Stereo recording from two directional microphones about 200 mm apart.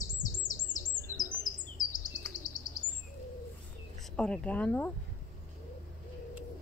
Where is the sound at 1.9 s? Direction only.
40° left (ahead or behind).